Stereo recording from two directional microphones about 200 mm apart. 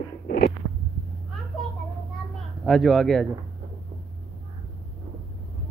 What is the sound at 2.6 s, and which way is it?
Speech, centre (ahead or behind).